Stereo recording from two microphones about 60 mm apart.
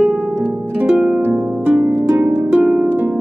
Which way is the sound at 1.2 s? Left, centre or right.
Right.